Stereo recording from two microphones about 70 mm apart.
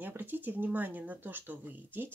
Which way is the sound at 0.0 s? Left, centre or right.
Right.